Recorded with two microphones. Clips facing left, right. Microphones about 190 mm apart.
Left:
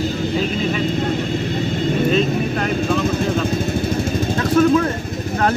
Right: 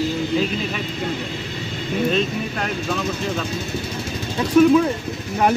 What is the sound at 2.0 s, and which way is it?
Speech, centre (ahead or behind).